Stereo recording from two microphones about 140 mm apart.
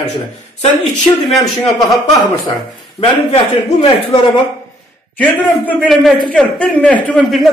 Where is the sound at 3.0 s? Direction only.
45° left (ahead or behind).